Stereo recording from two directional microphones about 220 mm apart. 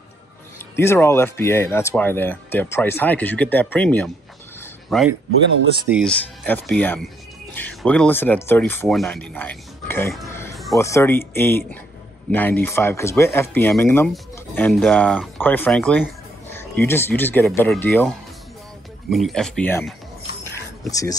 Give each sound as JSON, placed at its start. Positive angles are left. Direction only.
{"t": 0.7, "sound": "a man's voice", "side_deg": 10}
{"t": 6.4, "sound": "speech", "side_deg": 10}
{"t": 10.5, "sound": "a sound", "side_deg": 0}
{"t": 10.8, "sound": "speech", "side_deg": 10}
{"t": 20.9, "sound": "speech", "side_deg": 15}